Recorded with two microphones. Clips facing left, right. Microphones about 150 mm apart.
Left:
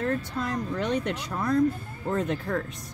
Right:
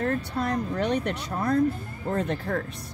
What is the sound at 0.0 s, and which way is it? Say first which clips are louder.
Speech: right 2 dB; 40° right (ahead or behind).